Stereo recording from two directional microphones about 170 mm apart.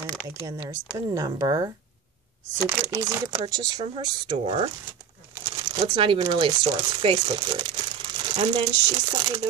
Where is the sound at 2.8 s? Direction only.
15° right (ahead or behind).